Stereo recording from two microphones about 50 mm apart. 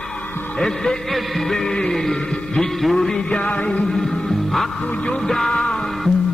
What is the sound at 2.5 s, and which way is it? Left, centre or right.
Music, centre.